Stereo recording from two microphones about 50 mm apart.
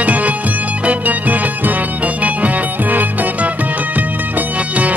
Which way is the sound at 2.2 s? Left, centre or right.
Right.